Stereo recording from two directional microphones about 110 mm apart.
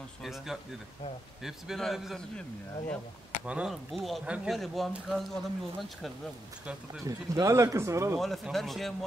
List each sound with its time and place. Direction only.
0.2 s speech: centre (ahead or behind)
3.4 s speech: 10° right (ahead or behind)
3.7 s speech: centre (ahead or behind)
7.1 s speech: 30° right (ahead or behind)
8.2 s speech: centre (ahead or behind)